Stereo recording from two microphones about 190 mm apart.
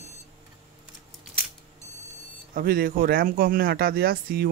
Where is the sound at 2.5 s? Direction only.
50° right (ahead or behind).